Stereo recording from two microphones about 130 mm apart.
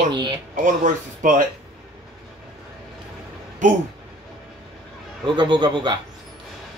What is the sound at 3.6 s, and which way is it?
Speech, 75° right (ahead or behind).